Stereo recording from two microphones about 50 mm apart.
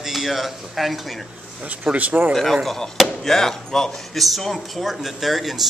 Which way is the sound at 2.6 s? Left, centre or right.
Centre.